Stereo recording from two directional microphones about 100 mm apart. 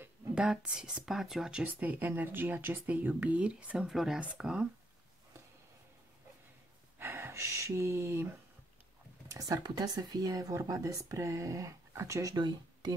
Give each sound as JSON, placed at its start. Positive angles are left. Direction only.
{"t": 0.3, "sound": "speech", "side_deg": -10}
{"t": 7.0, "sound": "speech", "side_deg": -25}
{"t": 9.3, "sound": "speech", "side_deg": -35}